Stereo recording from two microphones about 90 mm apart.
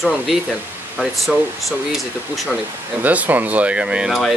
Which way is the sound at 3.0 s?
20° right (ahead or behind).